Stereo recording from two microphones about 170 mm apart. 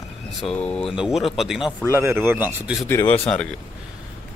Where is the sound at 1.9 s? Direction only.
15° right (ahead or behind).